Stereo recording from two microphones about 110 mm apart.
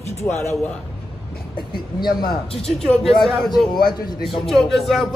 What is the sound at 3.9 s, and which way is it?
Speech, 40° left (ahead or behind).